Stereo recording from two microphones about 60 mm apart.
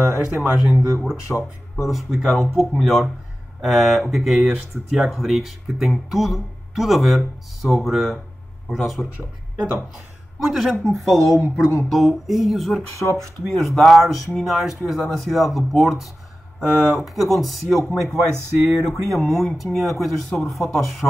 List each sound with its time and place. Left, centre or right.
0.0 s speech: centre
9.1 s speech: right
10.4 s speech: centre
16.5 s speech: centre
18.3 s speech: right
19.1 s speech: centre